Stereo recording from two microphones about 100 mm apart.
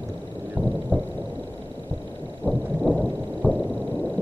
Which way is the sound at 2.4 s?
15° right (ahead or behind).